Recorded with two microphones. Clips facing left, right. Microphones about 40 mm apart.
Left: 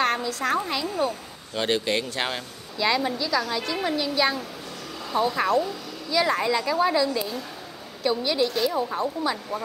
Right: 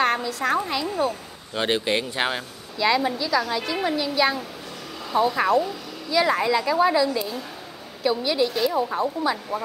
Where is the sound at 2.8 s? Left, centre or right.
Centre.